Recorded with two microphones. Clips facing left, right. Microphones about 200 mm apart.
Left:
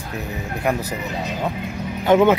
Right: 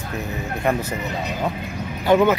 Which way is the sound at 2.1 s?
20° left (ahead or behind).